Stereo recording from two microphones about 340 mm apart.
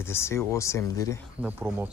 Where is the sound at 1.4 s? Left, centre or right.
Centre.